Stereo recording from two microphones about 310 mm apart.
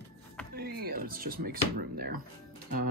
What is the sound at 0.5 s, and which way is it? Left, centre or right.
Speech, right.